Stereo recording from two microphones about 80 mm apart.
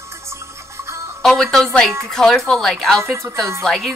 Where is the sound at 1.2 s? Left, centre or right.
Centre.